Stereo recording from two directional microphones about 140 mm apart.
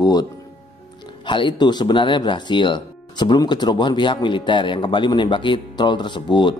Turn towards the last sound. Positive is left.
turn(degrees=35)  # may be behind; listen again after turning